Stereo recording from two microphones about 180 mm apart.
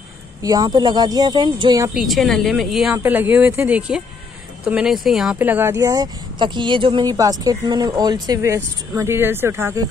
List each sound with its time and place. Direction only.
0.4 s speech: 20° right (ahead or behind)
2.0 s a woman's voice: centre (ahead or behind)